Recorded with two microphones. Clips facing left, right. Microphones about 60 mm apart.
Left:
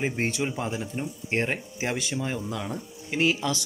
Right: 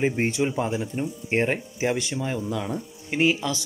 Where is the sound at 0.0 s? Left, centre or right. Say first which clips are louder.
Right 4 dB; centre.